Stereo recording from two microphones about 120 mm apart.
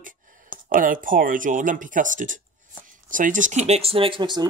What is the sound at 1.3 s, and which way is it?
Speech, 90° right.